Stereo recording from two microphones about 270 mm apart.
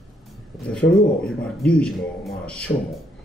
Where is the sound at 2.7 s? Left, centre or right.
Left.